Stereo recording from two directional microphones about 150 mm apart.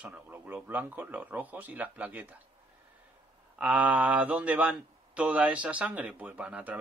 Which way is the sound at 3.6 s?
10° right (ahead or behind).